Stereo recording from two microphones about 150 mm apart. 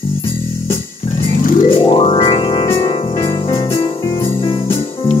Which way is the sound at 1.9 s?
35° left (ahead or behind).